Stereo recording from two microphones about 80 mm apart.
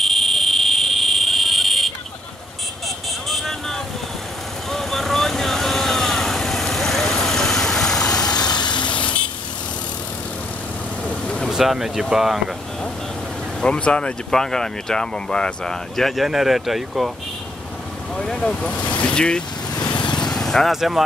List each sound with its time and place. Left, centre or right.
0.0 s a sound: centre
3.3 s vehicle: centre
8.4 s vehicle: left
11.1 s vehicle: centre
11.5 s speech: centre
13.6 s speech: centre
18.1 s speech: centre
19.7 s vehicle: left
20.0 s vehicle: centre